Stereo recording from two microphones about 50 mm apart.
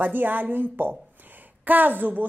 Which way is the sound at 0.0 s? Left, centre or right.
Right.